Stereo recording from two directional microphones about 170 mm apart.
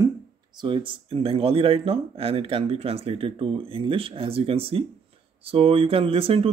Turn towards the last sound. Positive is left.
turn(degrees=-35)  # may be behind; listen again after turning